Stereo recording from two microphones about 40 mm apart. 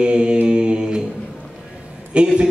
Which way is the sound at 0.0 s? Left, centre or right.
Right.